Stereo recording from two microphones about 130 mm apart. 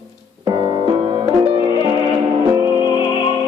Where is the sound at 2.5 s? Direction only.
25° right (ahead or behind).